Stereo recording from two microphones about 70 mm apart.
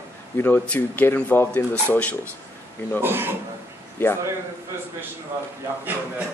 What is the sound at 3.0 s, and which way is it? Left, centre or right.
Speech, right.